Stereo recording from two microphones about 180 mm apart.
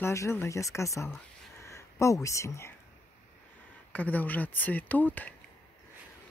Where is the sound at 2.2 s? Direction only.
15° left (ahead or behind).